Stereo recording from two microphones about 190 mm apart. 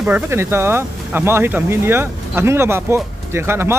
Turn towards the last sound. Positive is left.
turn(degrees=-15)  # may be behind; listen again after turning